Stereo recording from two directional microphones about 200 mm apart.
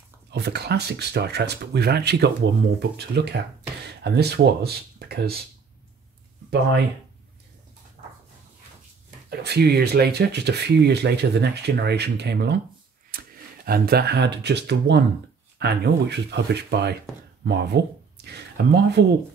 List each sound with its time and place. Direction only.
0.3 s speech: 55° right (ahead or behind)
9.3 s speech: 55° right (ahead or behind)
13.1 s a sound: 45° right (ahead or behind)
13.7 s speech: 50° right (ahead or behind)